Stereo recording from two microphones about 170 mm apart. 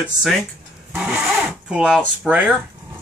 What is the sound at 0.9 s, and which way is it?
Vehicle, 10° right (ahead or behind).